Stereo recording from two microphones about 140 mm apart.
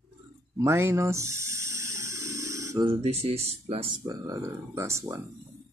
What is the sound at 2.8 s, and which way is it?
Speech, 45° right (ahead or behind).